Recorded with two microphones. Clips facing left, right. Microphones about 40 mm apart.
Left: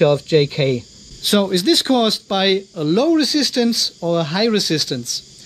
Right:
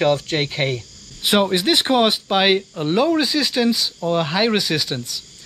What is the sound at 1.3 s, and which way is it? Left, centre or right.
Speech, centre.